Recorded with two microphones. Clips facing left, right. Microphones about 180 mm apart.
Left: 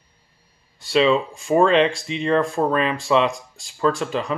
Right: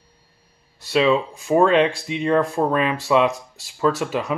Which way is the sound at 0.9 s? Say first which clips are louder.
Even; centre (ahead or behind).